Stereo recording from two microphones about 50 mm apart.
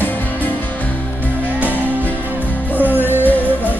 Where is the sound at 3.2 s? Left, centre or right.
Left.